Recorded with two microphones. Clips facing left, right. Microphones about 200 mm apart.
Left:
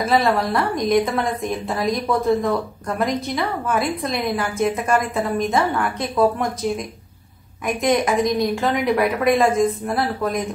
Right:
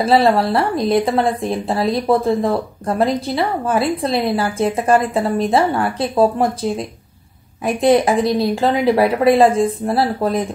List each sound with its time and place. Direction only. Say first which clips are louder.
0.0 s speech: right 5 dB; 30° right (ahead or behind)